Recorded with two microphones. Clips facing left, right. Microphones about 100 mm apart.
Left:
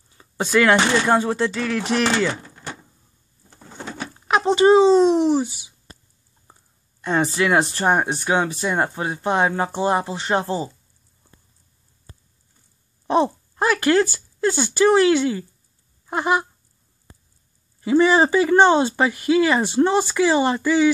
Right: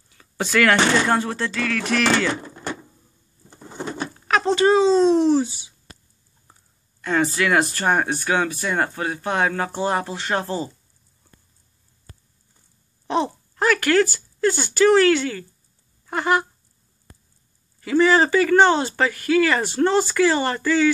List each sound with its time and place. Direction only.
0.1 s speech: 20° left (ahead or behind)
4.3 s a child's voice: 20° left (ahead or behind)
7.0 s speech: 20° left (ahead or behind)
13.0 s speech: 20° left (ahead or behind)
17.7 s speech: 20° left (ahead or behind)